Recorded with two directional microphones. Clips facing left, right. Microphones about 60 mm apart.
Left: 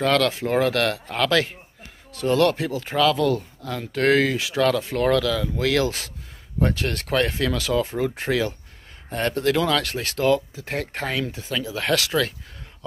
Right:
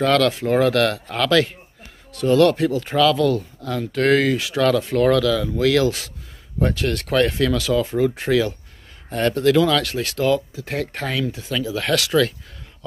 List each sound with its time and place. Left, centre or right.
0.0 s speech: centre